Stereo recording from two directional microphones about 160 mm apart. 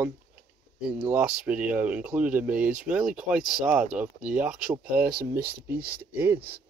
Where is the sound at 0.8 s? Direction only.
5° right (ahead or behind).